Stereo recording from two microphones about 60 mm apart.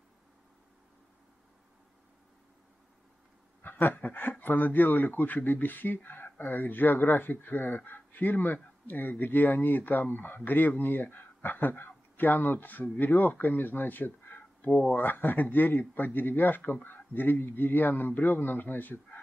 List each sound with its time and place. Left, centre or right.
3.6 s speech: left
14.7 s speech: centre
15.0 s speech: left